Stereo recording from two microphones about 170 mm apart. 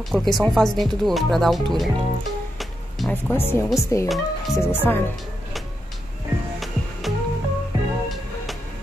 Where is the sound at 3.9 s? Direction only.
20° left (ahead or behind).